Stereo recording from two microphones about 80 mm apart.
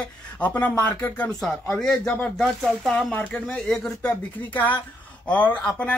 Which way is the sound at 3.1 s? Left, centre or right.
Centre.